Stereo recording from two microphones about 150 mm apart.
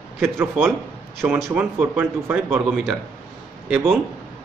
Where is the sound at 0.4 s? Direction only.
10° right (ahead or behind).